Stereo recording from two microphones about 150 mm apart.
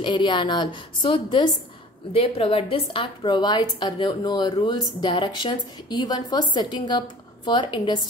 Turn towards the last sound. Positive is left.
turn(degrees=30)  # may be behind; listen again after turning